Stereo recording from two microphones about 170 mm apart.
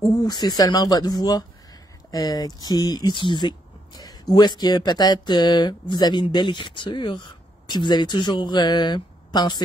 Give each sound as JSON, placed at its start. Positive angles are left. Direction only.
{"t": 0.2, "sound": "speech", "side_deg": 25}